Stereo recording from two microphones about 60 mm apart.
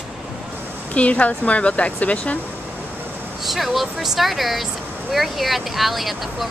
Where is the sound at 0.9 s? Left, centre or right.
Left.